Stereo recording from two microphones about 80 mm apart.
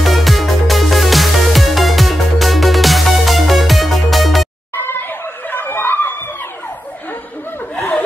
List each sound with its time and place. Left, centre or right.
0.0 s music: centre
4.7 s a sound: left
5.5 s snicker: left
7.7 s chuckle: centre